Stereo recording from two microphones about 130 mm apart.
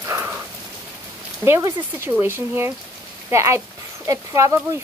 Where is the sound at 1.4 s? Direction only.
20° right (ahead or behind).